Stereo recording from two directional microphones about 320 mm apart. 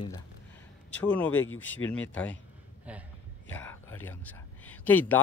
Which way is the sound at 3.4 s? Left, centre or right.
Centre.